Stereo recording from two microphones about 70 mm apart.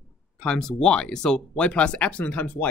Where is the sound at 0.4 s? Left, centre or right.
Centre.